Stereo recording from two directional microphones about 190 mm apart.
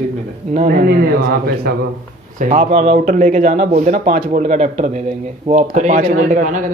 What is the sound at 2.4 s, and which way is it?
A man's voice, 40° right (ahead or behind).